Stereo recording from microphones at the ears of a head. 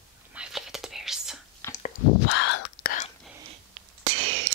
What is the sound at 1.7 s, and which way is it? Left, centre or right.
Whispering, left.